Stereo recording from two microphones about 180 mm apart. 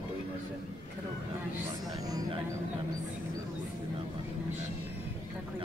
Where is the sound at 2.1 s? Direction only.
20° right (ahead or behind).